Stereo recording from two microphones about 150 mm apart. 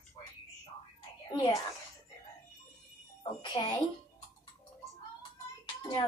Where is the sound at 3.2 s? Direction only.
30° left (ahead or behind).